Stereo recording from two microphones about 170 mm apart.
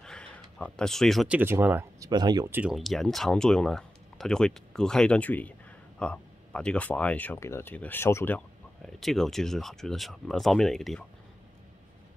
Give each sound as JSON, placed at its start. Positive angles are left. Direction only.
{"t": 0.0, "sound": "speech", "side_deg": 5}
{"t": 2.0, "sound": "speech", "side_deg": -25}
{"t": 2.5, "sound": "speech", "side_deg": -5}
{"t": 8.8, "sound": "speech", "side_deg": 0}